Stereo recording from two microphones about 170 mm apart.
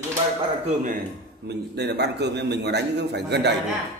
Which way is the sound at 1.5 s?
80° right.